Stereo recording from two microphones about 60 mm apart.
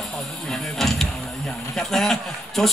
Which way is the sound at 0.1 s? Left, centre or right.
Centre.